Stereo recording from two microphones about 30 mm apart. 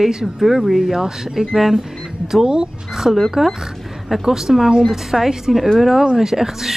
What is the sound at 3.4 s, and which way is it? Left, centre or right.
Speech, centre.